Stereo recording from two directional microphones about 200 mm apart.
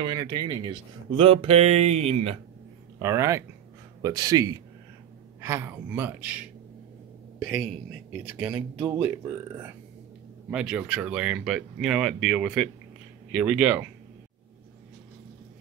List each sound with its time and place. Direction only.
0.0 s speech: 20° right (ahead or behind)
3.0 s a man's voice: 15° right (ahead or behind)
10.5 s speech: 5° right (ahead or behind)